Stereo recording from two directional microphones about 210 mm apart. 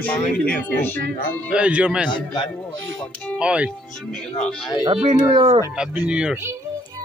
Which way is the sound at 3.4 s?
5° right (ahead or behind).